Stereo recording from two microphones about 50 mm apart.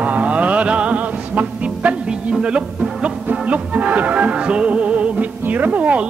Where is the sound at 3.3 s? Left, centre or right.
Right.